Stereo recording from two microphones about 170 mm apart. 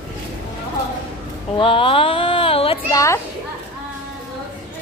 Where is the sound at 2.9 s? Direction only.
20° left (ahead or behind).